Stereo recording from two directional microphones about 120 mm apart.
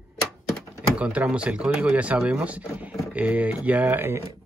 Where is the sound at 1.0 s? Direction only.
10° right (ahead or behind).